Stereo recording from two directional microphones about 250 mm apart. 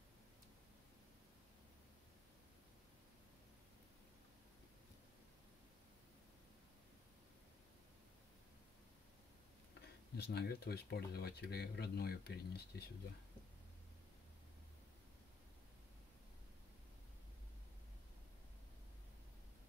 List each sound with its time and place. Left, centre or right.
10.1 s speech: left